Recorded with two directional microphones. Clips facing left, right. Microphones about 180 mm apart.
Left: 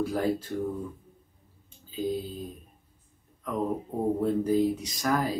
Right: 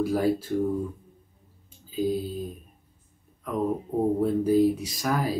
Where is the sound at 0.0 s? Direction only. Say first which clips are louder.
Right 3 dB; 10° right (ahead or behind).